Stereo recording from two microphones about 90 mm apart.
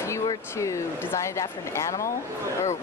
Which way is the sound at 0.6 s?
35° left (ahead or behind).